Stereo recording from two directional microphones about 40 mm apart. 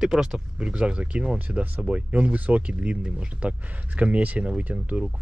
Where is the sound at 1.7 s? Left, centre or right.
Right.